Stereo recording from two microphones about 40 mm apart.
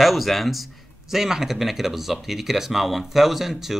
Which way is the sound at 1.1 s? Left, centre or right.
Centre.